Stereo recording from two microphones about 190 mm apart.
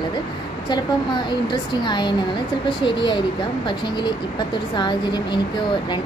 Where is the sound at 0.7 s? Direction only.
25° left (ahead or behind).